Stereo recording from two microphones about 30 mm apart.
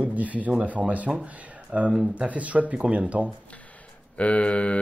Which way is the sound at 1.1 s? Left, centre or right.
Right.